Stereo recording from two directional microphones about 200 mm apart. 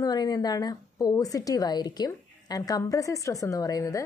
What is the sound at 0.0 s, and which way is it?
A woman's voice, 20° left (ahead or behind).